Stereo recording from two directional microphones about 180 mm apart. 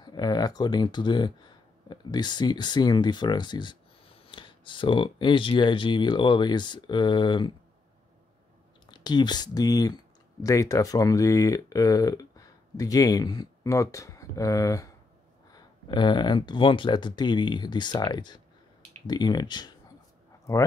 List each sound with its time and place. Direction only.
0.0 s speech: 25° left (ahead or behind)
8.9 s speech: 25° left (ahead or behind)